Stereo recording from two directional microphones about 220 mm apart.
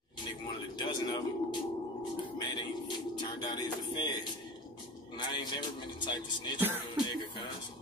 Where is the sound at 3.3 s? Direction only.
20° left (ahead or behind).